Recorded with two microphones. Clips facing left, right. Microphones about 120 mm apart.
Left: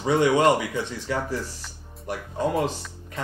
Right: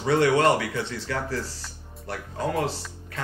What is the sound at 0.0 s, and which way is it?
Speech, 15° left (ahead or behind).